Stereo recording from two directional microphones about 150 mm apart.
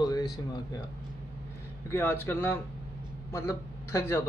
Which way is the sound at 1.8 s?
15° left (ahead or behind).